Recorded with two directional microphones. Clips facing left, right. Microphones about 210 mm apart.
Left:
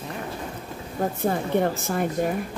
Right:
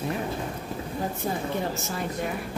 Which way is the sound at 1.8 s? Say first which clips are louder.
Left 6 dB; 55° left (ahead or behind).